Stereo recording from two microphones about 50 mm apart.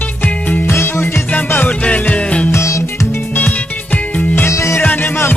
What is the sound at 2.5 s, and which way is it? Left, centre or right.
Music, left.